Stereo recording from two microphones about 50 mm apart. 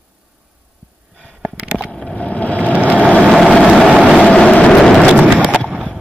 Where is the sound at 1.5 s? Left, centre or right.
Right.